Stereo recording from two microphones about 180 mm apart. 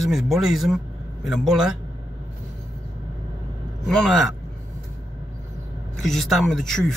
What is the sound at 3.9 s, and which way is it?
Speech, centre (ahead or behind).